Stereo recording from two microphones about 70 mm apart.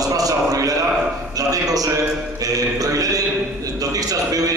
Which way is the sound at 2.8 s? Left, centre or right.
Right.